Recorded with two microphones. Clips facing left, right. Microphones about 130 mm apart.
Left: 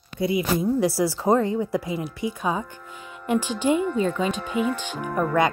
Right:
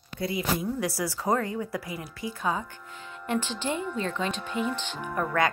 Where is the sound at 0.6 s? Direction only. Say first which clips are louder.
Left 8 dB; 30° left (ahead or behind); by 4.4 s 10° left (ahead or behind).